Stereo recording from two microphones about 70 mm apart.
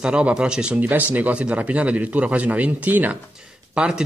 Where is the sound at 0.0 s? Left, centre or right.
Centre.